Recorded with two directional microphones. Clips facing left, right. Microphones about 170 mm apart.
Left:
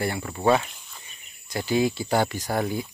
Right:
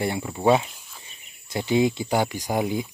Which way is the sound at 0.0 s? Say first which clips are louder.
Right 2 dB; 20° right (ahead or behind).